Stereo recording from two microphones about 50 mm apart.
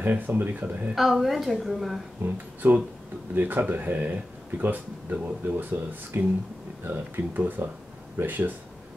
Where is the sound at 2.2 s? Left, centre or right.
Right.